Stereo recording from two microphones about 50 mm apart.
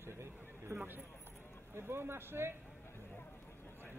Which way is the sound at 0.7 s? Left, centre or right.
Right.